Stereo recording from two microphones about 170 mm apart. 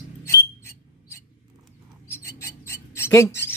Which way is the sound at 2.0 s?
15° left (ahead or behind).